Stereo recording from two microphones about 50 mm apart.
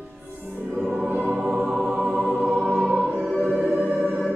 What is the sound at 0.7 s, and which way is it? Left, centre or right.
Choir, right.